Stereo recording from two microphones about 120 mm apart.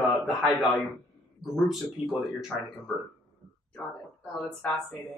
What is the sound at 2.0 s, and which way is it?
Speech, 50° left (ahead or behind).